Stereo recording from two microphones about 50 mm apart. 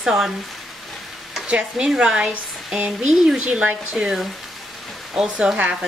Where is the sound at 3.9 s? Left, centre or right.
Centre.